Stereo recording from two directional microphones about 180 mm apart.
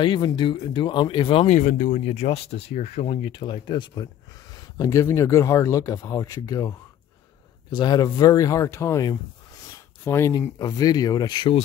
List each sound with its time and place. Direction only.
0.0 s speech: 25° left (ahead or behind)
1.5 s speech: 45° left (ahead or behind); by 6.7 s 20° left (ahead or behind)
7.7 s speech: 25° left (ahead or behind)